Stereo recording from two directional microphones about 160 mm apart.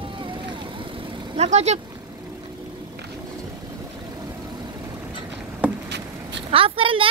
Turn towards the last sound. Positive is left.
turn(degrees=-35)  # may be behind; listen again after turning